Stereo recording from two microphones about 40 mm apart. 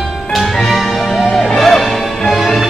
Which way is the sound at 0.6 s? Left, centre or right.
Centre.